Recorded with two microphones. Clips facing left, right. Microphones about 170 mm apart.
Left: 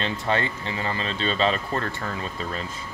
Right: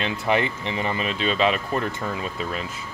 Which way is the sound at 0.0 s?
10° right (ahead or behind).